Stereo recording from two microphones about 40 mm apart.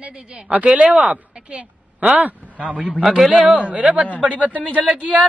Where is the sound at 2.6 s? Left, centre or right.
Right.